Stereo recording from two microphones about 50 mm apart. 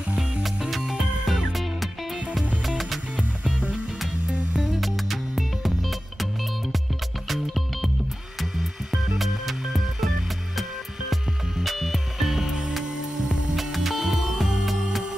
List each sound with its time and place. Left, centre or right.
0.7 s music: centre
3.2 s music: right
4.3 s music: centre
7.2 s music: centre